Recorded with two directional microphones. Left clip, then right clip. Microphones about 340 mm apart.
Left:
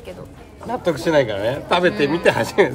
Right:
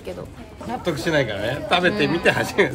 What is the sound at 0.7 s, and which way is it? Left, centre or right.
Speech, left.